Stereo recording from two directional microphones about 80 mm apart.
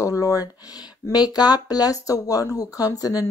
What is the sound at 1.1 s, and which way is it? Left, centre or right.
Speech, left.